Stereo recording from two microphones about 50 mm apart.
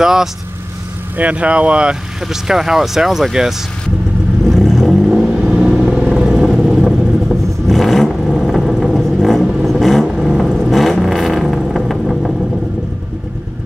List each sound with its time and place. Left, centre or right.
0.0 s speech: centre
1.1 s speech: right
2.2 s speech: centre
4.5 s vehicle: centre
5.4 s vehicle: centre